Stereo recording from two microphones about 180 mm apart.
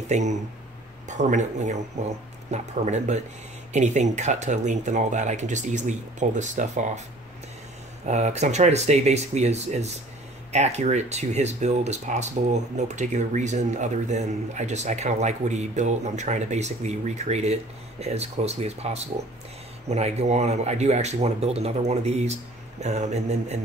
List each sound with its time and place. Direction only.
0.1 s speech: 40° right (ahead or behind)
8.0 s speech: 40° right (ahead or behind)